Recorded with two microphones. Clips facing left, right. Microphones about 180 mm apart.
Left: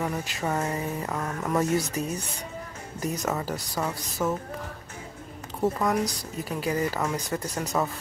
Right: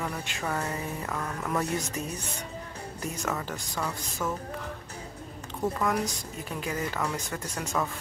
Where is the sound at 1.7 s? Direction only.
35° left (ahead or behind).